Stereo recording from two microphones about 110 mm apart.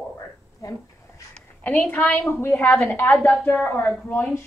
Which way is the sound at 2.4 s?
20° left (ahead or behind).